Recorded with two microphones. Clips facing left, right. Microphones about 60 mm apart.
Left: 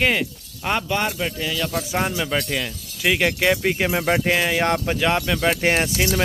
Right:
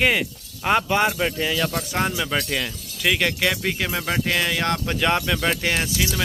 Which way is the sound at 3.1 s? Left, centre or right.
Centre.